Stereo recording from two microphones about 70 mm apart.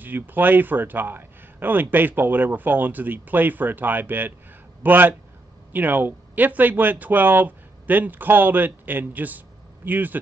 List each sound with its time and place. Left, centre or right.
0.0 s speech: right